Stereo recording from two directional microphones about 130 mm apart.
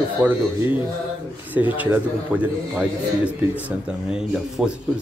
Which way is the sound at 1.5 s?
10° right (ahead or behind).